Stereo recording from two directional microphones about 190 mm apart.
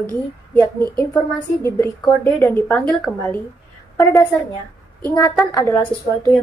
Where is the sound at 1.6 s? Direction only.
15° left (ahead or behind).